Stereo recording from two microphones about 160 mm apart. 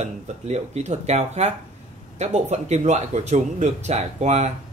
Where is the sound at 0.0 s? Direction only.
45° right (ahead or behind).